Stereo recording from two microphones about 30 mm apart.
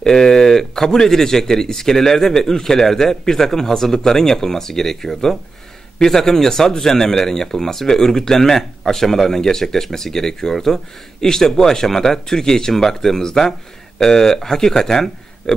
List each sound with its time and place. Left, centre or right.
0.0 s a man's voice: centre